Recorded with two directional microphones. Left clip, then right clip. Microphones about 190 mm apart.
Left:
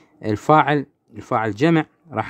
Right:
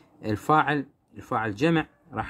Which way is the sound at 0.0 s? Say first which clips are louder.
Left 7 dB; 40° left (ahead or behind).